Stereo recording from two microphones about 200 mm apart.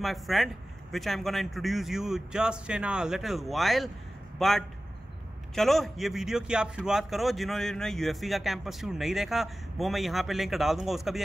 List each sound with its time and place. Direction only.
0.0 s speech: centre (ahead or behind)